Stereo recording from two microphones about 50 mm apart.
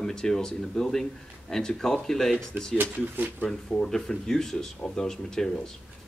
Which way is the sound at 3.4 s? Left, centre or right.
Centre.